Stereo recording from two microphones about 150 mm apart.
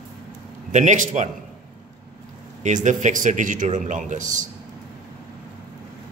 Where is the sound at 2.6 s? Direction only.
55° right (ahead or behind).